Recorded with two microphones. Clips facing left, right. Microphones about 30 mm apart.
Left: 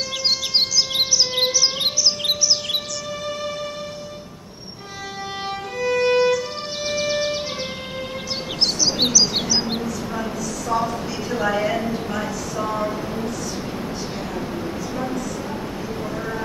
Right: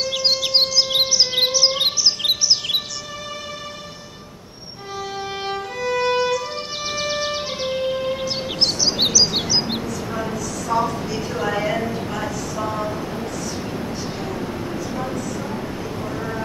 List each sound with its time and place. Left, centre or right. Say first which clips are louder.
0.0 s music: right 2 dB; centre
5.4 s violin: left 2 dB; centre
7.1 s music: even; centre
7.6 s bird vocalization: right 7 dB; centre
10.7 s a woman's voice: right 2 dB; centre